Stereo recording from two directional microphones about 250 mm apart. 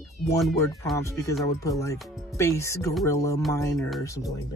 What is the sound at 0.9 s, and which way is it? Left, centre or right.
Speech, centre.